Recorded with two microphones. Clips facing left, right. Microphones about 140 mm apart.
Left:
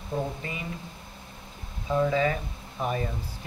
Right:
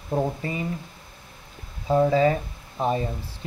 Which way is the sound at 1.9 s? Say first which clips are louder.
Right 5 dB; 35° right (ahead or behind).